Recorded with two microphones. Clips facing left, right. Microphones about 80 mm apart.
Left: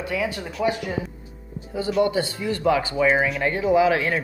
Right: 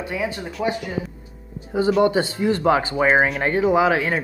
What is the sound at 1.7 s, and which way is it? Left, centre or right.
Speech, right.